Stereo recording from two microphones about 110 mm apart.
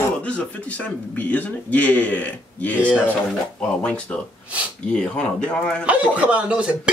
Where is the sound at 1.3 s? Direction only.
15° left (ahead or behind).